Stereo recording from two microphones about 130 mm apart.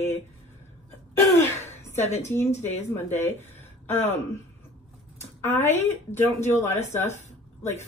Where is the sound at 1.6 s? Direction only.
15° left (ahead or behind).